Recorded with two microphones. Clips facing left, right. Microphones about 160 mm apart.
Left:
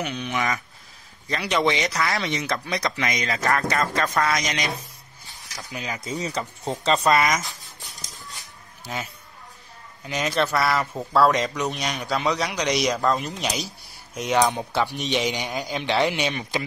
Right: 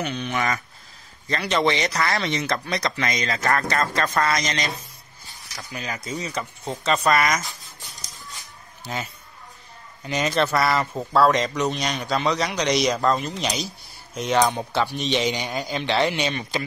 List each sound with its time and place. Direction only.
0.0 s a man's voice: 10° left (ahead or behind)
4.4 s speech: 15° left (ahead or behind)
10.0 s speech: 5° left (ahead or behind)